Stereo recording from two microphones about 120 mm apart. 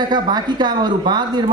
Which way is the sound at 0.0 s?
35° right (ahead or behind).